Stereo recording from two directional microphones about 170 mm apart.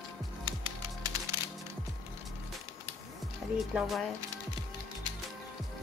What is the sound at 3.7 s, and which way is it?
Speech, centre (ahead or behind).